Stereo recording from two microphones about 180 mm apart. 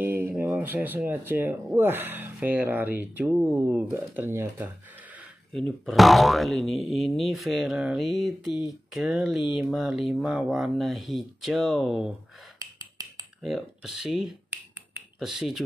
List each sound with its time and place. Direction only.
0.0 s speech: 10° right (ahead or behind)
5.5 s speech: centre (ahead or behind)
13.4 s speech: centre (ahead or behind)